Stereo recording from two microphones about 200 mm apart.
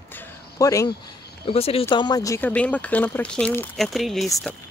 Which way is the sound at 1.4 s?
30° left (ahead or behind).